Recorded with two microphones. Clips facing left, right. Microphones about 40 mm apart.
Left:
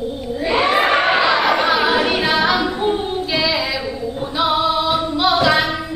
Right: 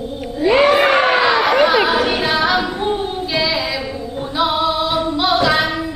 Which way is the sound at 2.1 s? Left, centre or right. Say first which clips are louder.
Even; centre.